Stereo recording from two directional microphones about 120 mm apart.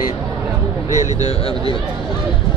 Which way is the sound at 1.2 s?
50° left (ahead or behind).